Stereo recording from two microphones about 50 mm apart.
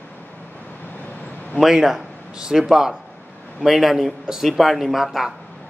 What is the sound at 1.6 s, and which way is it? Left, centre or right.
Speech, centre.